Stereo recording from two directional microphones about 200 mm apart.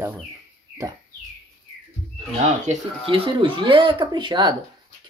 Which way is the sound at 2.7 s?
25° right (ahead or behind).